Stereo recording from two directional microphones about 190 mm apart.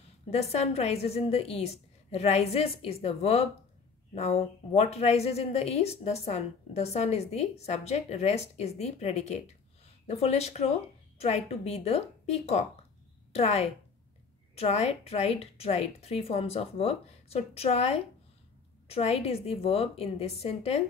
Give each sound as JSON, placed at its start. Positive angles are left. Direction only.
{"t": 0.3, "sound": "a woman's voice", "side_deg": 35}